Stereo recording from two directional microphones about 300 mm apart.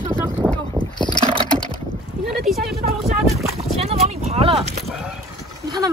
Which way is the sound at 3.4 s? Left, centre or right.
Centre.